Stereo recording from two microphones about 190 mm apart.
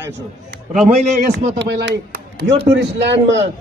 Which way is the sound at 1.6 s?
65° right (ahead or behind).